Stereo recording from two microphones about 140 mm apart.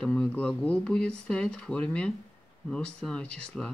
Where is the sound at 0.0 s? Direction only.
5° left (ahead or behind).